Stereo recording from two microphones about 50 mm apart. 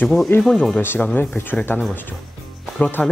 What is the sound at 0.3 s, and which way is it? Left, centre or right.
Speech, left.